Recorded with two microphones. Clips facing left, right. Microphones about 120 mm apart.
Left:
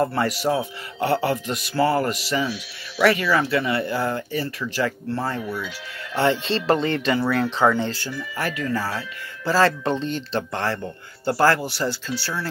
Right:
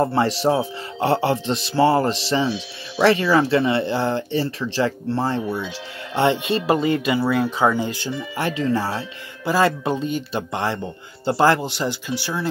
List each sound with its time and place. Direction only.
0.0 s speech: 25° right (ahead or behind)
9.4 s speech: 15° right (ahead or behind)